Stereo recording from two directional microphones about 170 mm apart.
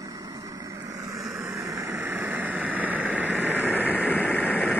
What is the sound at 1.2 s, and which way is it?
Vehicle, 20° right (ahead or behind).